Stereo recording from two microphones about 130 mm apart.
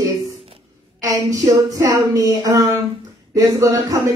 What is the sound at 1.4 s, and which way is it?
Speech, 25° right (ahead or behind).